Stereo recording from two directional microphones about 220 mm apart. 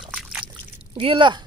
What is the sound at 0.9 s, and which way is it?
Speech, 25° right (ahead or behind).